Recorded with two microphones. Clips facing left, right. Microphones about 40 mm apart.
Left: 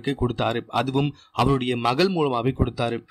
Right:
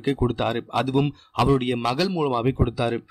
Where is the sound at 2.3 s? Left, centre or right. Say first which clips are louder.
Right 1 dB; centre.